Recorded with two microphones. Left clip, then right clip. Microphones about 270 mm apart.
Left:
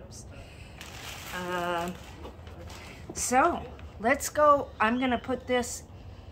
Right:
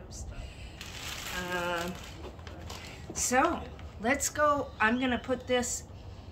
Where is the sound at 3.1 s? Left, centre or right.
Centre.